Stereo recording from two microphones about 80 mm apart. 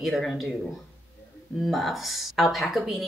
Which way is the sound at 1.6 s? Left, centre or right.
Centre.